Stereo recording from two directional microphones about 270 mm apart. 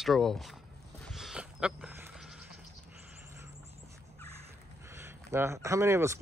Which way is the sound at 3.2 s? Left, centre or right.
Centre.